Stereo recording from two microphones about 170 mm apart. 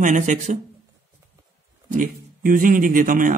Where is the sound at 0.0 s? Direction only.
50° right (ahead or behind).